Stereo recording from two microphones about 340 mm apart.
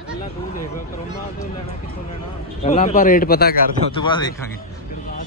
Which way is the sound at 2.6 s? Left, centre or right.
Centre.